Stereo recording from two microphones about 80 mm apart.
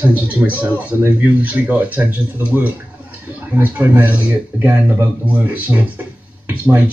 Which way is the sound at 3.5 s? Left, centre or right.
Right.